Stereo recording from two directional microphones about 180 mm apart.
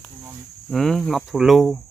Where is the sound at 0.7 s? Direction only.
Centre (ahead or behind).